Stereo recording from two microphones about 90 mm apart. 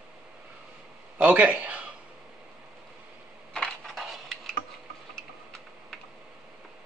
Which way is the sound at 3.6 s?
Centre (ahead or behind).